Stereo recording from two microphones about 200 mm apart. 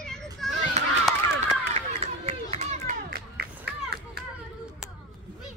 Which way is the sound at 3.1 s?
50° right (ahead or behind).